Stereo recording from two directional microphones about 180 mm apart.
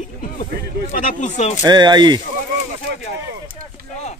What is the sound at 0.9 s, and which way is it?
Speech, 45° left (ahead or behind).